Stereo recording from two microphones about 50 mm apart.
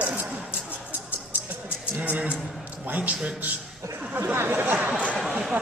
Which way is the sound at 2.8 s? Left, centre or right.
Right.